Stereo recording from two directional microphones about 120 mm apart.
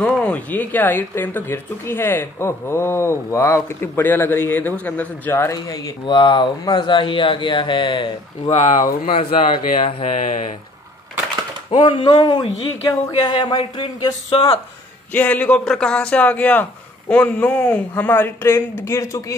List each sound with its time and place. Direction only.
0.0 s speech: 10° left (ahead or behind); by 8.1 s 40° left (ahead or behind)
8.5 s speech: 70° left (ahead or behind)
9.7 s speech: 90° left
11.8 s speech: 40° left (ahead or behind)
15.1 s speech: 15° left (ahead or behind)